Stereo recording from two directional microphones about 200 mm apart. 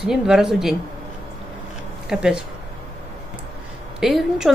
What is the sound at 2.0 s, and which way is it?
Speech, 5° right (ahead or behind).